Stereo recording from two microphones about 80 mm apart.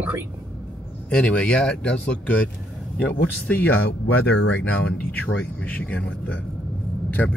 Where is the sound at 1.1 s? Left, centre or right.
Centre.